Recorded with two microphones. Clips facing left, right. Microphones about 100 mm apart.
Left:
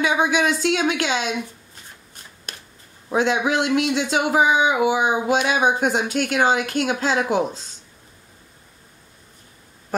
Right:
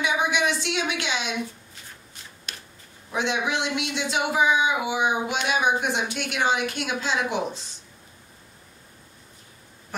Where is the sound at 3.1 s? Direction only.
40° left (ahead or behind).